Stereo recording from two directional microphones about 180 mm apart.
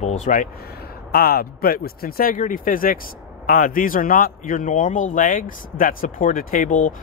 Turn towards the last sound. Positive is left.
turn(degrees=50)  # may be behind; listen again after turning